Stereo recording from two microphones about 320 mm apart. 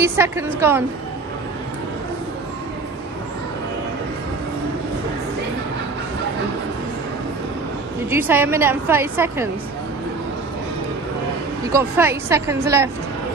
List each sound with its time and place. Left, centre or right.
0.0 s a woman's voice: centre
8.1 s a woman's voice: centre
11.7 s a woman's voice: centre